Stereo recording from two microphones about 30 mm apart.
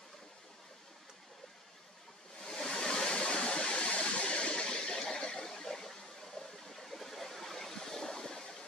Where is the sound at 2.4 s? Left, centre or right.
Centre; by 4.6 s left.